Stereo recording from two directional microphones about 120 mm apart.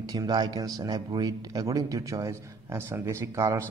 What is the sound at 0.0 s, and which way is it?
A man's voice, 30° right (ahead or behind).